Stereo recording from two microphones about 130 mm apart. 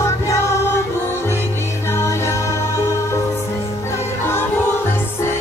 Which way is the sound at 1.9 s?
20° left (ahead or behind).